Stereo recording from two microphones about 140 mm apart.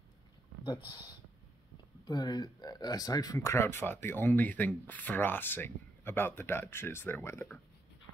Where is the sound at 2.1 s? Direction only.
30° left (ahead or behind).